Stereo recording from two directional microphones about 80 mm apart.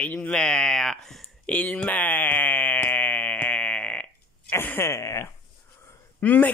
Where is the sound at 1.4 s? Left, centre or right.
Centre.